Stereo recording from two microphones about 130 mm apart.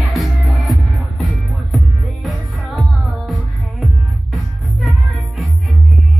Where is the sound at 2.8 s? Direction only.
Centre (ahead or behind).